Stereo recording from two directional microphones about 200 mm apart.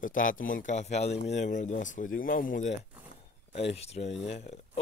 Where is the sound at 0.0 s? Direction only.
40° left (ahead or behind).